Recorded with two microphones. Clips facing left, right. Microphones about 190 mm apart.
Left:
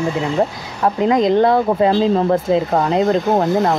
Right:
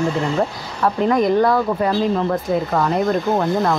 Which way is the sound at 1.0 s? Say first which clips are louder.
Left 2 dB; 20° left (ahead or behind).